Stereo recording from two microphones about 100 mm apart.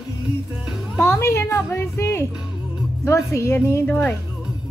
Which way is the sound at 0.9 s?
25° left (ahead or behind).